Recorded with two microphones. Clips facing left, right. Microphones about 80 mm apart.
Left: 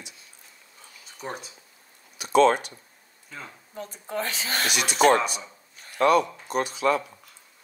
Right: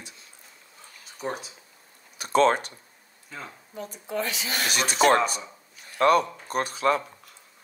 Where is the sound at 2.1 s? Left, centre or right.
Right.